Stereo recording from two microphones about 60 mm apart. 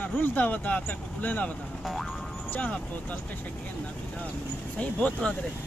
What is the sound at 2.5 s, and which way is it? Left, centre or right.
Speech, left.